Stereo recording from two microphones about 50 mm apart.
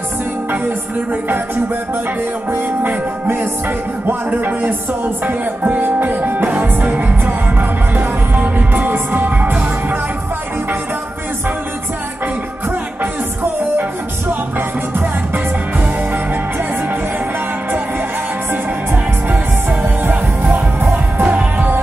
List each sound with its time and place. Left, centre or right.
4.6 s speech: right
7.9 s music: right
19.8 s music: right
20.9 s music: right